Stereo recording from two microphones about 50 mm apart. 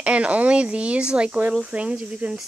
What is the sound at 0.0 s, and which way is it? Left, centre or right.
Speech, right.